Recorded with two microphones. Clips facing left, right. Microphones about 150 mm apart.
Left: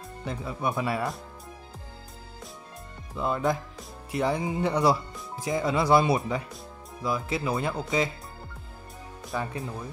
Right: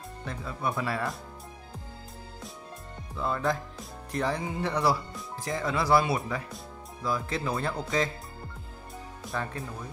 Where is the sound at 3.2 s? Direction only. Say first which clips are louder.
Left 2 dB; 15° left (ahead or behind).